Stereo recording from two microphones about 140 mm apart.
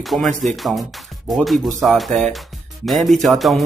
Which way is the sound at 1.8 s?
Centre (ahead or behind).